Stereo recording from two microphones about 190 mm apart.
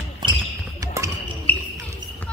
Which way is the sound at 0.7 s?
15° right (ahead or behind).